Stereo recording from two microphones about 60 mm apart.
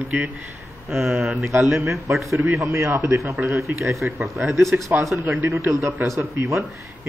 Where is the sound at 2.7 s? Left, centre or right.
Right.